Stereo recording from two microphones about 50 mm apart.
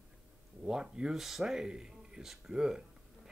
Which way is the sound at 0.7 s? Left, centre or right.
Centre.